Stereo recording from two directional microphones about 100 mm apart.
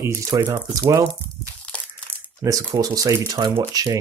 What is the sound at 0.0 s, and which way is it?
Speech, 25° right (ahead or behind).